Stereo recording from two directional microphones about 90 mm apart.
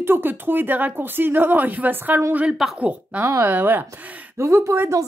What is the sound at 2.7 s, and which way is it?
Speech, 15° right (ahead or behind).